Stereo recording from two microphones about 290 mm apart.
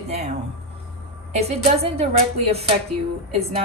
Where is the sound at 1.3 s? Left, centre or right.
Right.